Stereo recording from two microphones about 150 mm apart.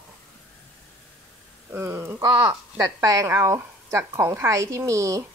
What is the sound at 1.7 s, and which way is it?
A woman's voice, 15° right (ahead or behind).